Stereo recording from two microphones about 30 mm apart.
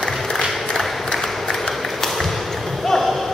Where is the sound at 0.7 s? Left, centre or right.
Centre.